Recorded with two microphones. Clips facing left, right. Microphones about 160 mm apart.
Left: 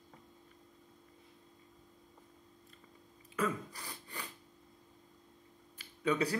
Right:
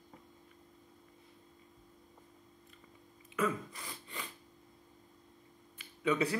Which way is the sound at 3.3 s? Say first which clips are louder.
Right 1 dB; 35° left (ahead or behind).